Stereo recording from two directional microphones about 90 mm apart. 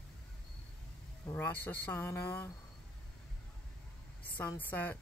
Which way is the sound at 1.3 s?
20° left (ahead or behind).